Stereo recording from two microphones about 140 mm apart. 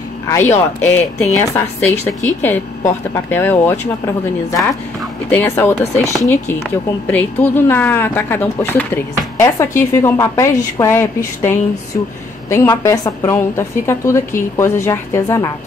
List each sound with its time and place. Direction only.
0.3 s a woman's voice: 15° left (ahead or behind)